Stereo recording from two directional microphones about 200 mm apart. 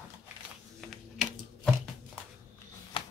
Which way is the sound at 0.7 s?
Centre (ahead or behind).